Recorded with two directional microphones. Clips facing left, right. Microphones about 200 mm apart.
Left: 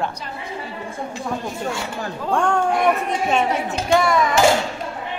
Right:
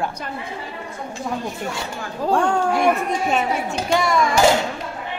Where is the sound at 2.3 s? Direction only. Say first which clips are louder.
Even; centre (ahead or behind).